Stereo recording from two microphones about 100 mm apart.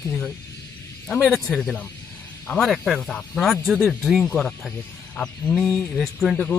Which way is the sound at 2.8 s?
5° left (ahead or behind).